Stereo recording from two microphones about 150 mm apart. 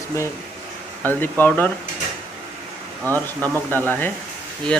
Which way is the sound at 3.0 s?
15° left (ahead or behind).